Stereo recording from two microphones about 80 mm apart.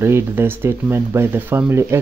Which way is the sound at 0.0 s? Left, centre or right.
Right.